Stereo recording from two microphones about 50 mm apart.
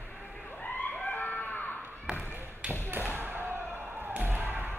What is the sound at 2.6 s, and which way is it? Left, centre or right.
Basketball bounce, right.